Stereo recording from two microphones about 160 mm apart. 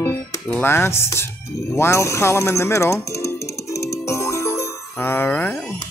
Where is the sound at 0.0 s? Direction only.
10° left (ahead or behind).